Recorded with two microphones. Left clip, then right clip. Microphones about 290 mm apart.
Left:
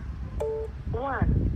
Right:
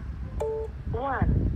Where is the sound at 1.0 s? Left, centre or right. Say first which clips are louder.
Right 1 dB; centre.